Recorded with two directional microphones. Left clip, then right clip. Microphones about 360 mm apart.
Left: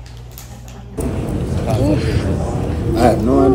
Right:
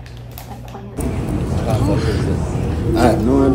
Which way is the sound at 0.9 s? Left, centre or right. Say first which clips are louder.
Left 1 dB; centre.